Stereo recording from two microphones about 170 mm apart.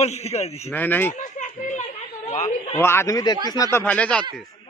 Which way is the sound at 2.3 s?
45° left (ahead or behind).